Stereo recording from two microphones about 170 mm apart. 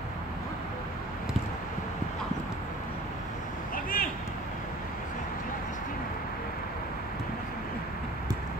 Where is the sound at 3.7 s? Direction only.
60° left (ahead or behind).